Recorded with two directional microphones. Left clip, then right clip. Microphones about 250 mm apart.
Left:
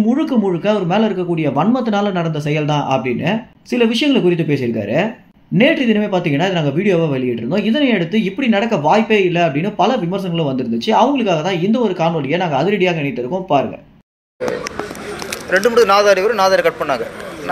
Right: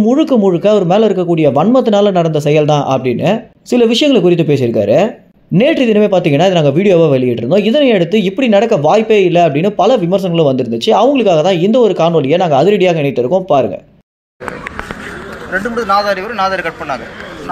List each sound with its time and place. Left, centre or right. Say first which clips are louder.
0.0 s speech: right 6 dB; right
15.5 s a man's voice: left 2 dB; left